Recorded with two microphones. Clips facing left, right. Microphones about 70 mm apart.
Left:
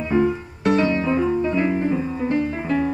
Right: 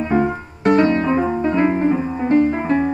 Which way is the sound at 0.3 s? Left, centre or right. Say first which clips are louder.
Right 4 dB; right.